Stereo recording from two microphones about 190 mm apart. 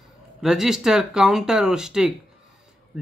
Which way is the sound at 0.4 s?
Centre (ahead or behind).